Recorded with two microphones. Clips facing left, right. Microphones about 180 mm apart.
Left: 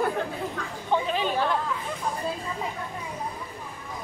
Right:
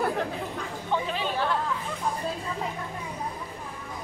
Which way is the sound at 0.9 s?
15° left (ahead or behind).